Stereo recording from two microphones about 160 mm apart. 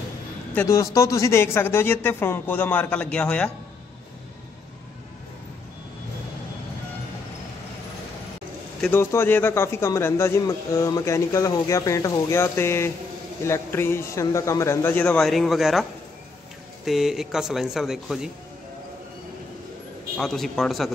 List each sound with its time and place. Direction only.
0.6 s speech: 20° left (ahead or behind)
8.9 s speech: 15° left (ahead or behind); by 18.3 s centre (ahead or behind)
20.2 s speech: centre (ahead or behind)